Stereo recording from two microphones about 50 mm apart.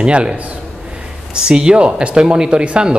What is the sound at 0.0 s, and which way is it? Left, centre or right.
Speech, right.